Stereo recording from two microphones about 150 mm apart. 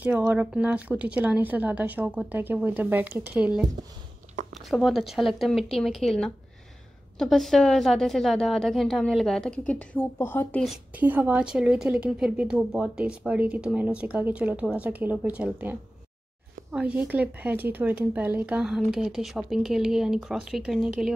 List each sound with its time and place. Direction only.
0.0 s a woman's voice: 10° right (ahead or behind); by 10.6 s 15° left (ahead or behind)
10.6 s a woman's voice: 5° right (ahead or behind)
16.7 s speech: 5° right (ahead or behind)